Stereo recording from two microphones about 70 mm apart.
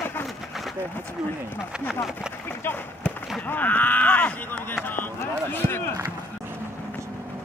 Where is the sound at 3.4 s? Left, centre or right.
Left.